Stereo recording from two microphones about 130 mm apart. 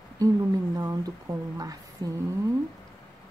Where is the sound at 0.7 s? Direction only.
30° right (ahead or behind).